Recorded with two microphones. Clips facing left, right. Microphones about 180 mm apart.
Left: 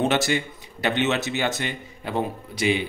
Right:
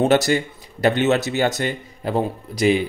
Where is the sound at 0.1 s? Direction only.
40° right (ahead or behind).